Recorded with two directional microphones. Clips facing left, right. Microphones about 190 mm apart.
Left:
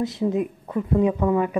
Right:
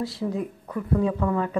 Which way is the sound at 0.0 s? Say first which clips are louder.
Left 5 dB; 20° left (ahead or behind).